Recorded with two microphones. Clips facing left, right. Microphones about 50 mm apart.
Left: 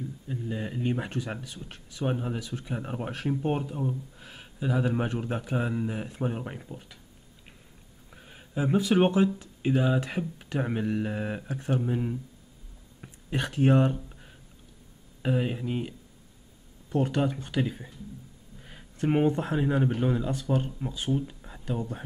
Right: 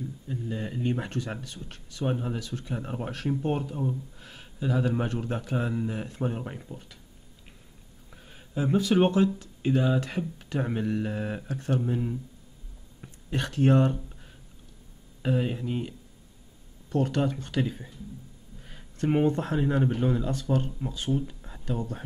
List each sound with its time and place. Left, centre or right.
0.3 s speech: centre
8.1 s speech: centre
13.0 s a sound: centre
15.2 s speech: centre
16.9 s speech: centre